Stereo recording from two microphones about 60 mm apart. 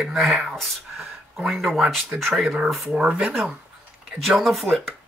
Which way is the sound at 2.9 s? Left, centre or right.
Centre.